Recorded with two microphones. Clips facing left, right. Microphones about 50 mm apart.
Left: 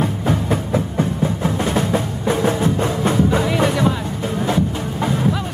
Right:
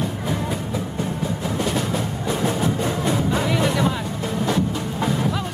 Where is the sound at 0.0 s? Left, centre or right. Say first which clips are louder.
Left 5 dB; left.